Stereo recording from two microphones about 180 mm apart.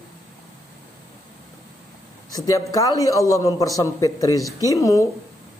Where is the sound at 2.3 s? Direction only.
20° left (ahead or behind).